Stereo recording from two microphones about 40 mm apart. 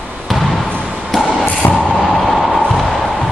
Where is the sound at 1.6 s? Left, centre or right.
Left.